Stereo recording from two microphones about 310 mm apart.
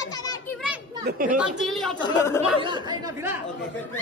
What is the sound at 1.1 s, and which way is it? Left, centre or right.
Speech, right.